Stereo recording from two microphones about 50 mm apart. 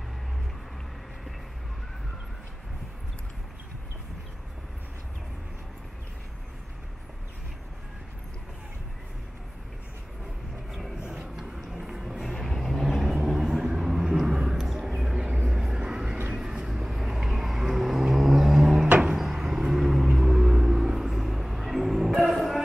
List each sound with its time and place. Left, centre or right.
10.7 s vehicle: centre
11.0 s a sound: centre
12.0 s music: centre
12.8 s vehicle: centre